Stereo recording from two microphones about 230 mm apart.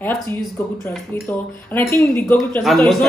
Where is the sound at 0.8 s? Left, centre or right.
Centre.